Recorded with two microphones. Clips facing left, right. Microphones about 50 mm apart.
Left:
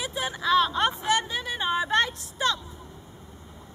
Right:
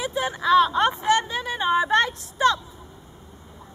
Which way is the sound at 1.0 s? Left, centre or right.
Right.